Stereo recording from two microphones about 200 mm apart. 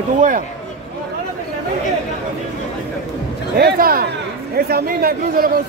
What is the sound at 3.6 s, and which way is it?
Speech, 45° right (ahead or behind).